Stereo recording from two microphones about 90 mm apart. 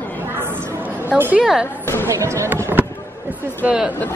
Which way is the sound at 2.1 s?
35° right (ahead or behind).